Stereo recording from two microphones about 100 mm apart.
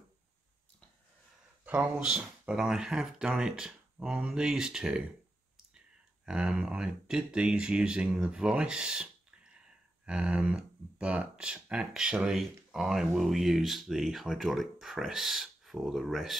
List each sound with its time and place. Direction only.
1.6 s speech: 15° right (ahead or behind)
2.0 s speech: 5° right (ahead or behind)
6.2 s speech: 10° right (ahead or behind)